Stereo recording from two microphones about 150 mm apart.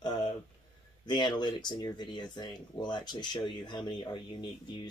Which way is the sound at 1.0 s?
30° left (ahead or behind).